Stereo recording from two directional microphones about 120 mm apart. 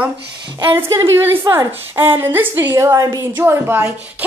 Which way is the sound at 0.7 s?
25° right (ahead or behind).